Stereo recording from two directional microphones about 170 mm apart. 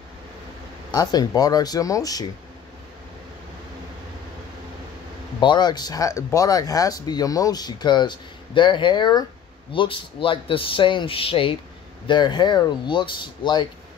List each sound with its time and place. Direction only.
0.9 s speech: 20° left (ahead or behind)
5.4 s a man's voice: 25° left (ahead or behind)